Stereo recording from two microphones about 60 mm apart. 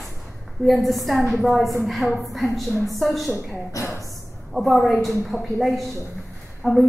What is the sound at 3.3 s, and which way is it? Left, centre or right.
Speech, left.